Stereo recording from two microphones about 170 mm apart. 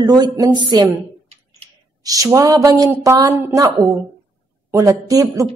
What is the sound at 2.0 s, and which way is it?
A woman's voice, 20° right (ahead or behind).